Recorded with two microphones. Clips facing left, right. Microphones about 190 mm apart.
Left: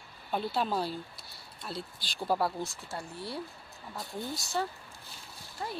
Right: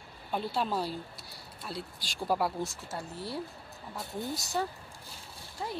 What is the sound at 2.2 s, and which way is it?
Speech, 10° right (ahead or behind).